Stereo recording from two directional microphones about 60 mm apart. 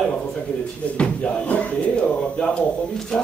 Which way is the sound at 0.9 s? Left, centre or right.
Centre.